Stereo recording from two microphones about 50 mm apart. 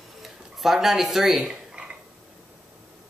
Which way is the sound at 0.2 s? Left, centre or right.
Centre.